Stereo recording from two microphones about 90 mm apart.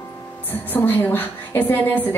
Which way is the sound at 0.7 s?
20° left (ahead or behind).